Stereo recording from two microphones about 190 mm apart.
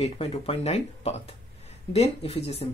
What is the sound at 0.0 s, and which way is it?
Speech, 35° left (ahead or behind).